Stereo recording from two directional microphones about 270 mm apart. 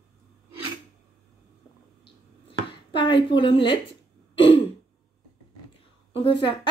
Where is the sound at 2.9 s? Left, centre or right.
Centre.